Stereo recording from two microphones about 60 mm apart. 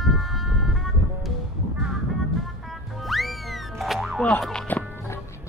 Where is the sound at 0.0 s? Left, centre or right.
Centre.